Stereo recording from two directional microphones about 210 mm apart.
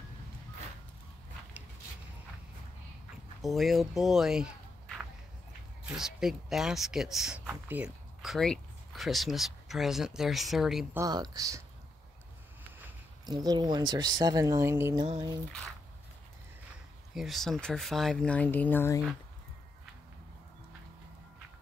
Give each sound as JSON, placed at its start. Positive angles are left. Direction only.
{"t": 3.4, "sound": "speech", "side_deg": 0}
{"t": 5.9, "sound": "speech", "side_deg": 0}
{"t": 11.0, "sound": "speech", "side_deg": -20}
{"t": 13.2, "sound": "speech", "side_deg": -20}
{"t": 17.1, "sound": "speech", "side_deg": 0}